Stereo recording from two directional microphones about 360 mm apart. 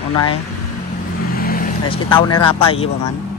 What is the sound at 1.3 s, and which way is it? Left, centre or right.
Speech, left.